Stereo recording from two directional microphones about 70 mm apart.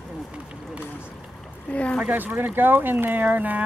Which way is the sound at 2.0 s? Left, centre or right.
Right.